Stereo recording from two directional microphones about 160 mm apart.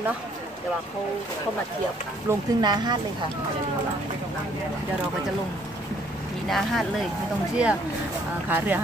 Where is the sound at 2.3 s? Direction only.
15° right (ahead or behind).